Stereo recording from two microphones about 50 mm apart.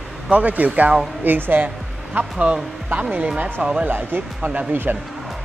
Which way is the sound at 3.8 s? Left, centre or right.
Right.